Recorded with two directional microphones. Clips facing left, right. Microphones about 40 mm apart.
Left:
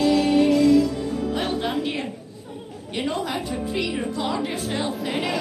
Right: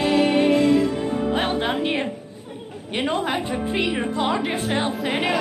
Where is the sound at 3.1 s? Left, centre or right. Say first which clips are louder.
Right 4 dB; right.